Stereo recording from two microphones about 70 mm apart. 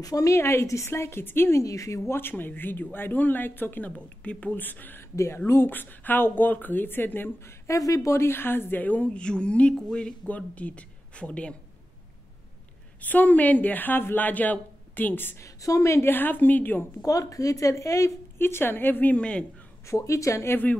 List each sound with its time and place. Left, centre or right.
0.0 s speech: left
0.4 s a woman's voice: left
1.6 s speech: left
2.1 s speech: left
5.1 s speech: left
5.5 s speech: left
7.6 s speech: left; by 10.1 s centre
10.2 s speech: left
13.0 s speech: left
15.3 s a woman's voice: left
17.0 s speech: left
18.4 s speech: left
19.1 s a man's voice: centre
19.9 s speech: left